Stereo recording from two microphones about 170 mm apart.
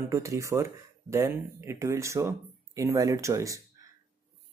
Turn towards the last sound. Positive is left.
turn(degrees=-20)  # may be behind; listen again after turning